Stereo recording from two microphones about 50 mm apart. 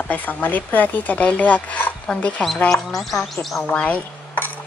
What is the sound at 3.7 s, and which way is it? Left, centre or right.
Speech, left.